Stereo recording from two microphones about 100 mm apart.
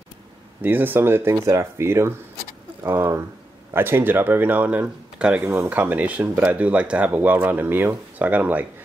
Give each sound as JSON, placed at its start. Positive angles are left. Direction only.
{"t": 0.6, "sound": "speech", "side_deg": -20}